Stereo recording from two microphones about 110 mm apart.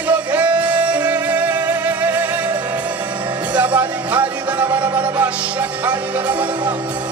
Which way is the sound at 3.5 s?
15° right (ahead or behind).